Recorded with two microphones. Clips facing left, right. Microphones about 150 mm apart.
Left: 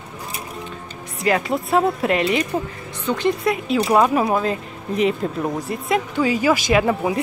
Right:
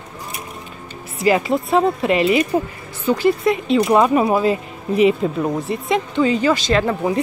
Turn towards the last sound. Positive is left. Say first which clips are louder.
# even
turn(degrees=10)  # may be behind; listen again after turning